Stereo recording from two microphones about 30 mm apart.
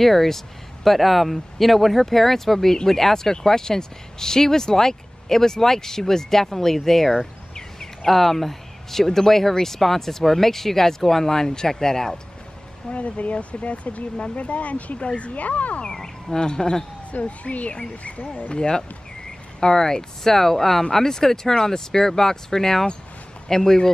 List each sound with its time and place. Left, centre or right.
0.0 s speech: centre
7.5 s a sound: centre
8.1 s speech: centre
12.9 s speech: left
15.0 s speech: left
15.8 s speech: left
17.1 s speech: left
18.5 s speech: left